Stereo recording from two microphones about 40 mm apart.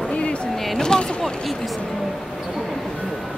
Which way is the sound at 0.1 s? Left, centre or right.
Left.